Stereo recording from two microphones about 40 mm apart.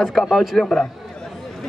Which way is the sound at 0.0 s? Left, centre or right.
Centre.